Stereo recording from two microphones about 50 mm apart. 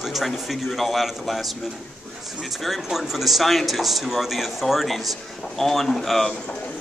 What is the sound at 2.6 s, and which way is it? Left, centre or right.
Speech, centre.